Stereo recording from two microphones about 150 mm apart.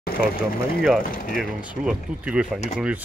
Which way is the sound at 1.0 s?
70° left (ahead or behind).